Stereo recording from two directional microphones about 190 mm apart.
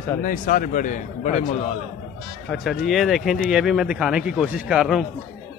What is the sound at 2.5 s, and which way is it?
Speech, centre (ahead or behind).